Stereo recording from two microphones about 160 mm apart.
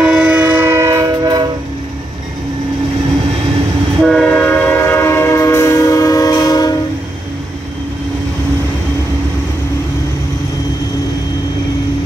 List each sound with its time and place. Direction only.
0.0 s train: 5° right (ahead or behind); by 1.5 s 25° right (ahead or behind)
4.0 s train: 5° left (ahead or behind); by 6.7 s 25° left (ahead or behind)